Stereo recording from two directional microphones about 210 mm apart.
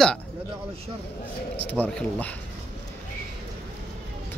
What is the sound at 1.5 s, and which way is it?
Speech, 5° left (ahead or behind).